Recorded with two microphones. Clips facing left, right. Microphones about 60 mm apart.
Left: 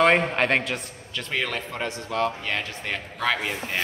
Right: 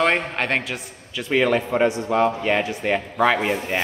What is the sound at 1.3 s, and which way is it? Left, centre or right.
A man's voice, centre.